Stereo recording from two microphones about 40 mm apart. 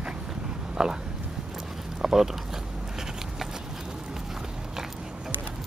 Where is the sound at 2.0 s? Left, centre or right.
Centre.